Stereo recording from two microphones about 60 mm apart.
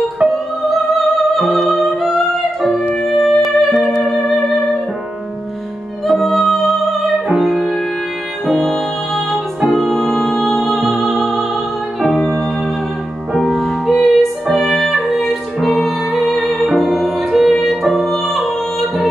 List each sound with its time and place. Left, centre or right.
0.2 s music: right
0.7 s music: centre
6.0 s music: centre